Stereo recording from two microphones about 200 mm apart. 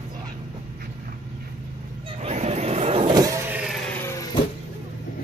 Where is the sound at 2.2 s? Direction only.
35° right (ahead or behind); by 3.6 s 15° right (ahead or behind).